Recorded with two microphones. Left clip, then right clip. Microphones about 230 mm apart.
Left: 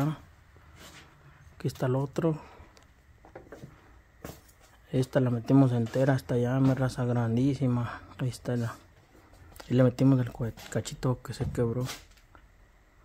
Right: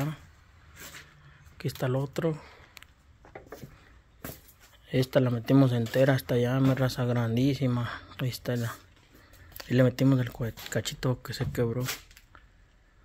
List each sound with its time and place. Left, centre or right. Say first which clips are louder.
1.6 s speech: left 1 dB; left
4.8 s speech: right 2 dB; centre